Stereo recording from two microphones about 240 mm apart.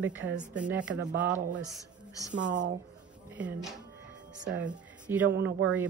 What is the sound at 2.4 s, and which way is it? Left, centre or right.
Speech, right.